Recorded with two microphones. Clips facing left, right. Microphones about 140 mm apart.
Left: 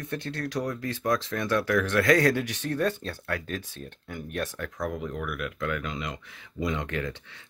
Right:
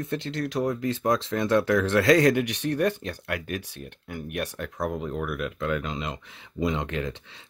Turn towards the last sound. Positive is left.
turn(degrees=-25)  # may be behind; listen again after turning